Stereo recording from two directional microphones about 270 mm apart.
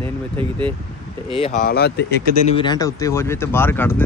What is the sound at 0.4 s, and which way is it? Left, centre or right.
Speech, centre.